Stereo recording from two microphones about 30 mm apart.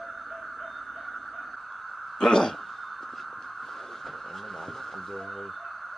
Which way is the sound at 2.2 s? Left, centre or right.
Centre.